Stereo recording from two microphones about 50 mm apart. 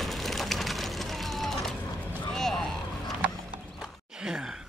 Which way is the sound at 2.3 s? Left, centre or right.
Centre.